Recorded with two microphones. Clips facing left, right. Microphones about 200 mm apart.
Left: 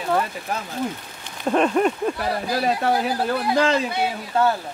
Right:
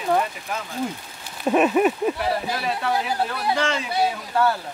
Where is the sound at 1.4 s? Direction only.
5° right (ahead or behind).